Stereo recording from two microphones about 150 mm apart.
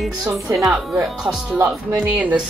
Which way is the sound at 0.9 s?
15° right (ahead or behind).